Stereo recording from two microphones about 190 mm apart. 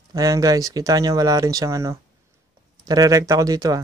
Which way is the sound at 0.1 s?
15° right (ahead or behind).